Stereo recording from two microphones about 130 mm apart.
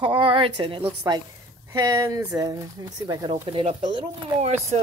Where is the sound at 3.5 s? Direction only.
40° right (ahead or behind).